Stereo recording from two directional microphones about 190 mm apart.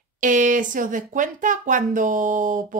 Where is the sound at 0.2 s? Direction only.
45° right (ahead or behind).